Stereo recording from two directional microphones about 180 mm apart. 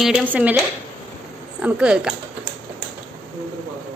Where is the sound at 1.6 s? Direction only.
5° right (ahead or behind).